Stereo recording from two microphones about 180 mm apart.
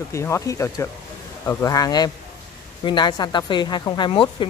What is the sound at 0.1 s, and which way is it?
Speech, 15° left (ahead or behind).